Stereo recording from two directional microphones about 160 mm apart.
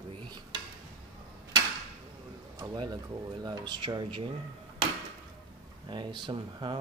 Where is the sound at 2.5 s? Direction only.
25° right (ahead or behind).